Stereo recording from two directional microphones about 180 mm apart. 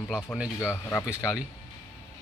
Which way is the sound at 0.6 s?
15° left (ahead or behind).